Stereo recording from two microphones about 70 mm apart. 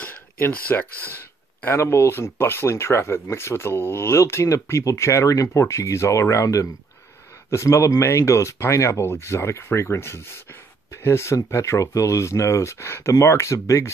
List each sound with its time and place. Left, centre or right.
0.0 s speech: left